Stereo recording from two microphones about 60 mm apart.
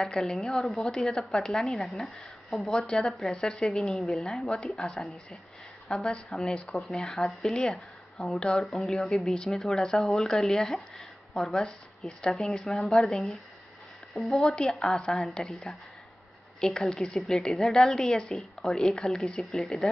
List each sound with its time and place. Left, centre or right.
0.0 s a woman's voice: centre
6.4 s a woman's voice: centre
6.7 s a woman's voice: centre